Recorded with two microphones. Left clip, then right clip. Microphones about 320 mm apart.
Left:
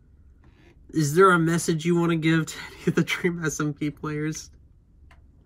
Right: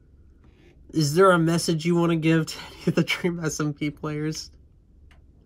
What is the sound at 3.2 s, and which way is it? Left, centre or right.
Speech, centre.